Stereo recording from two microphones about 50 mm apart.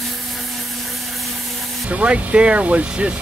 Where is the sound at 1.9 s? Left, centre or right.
Right.